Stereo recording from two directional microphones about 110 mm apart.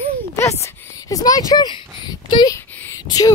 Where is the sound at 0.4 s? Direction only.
25° left (ahead or behind).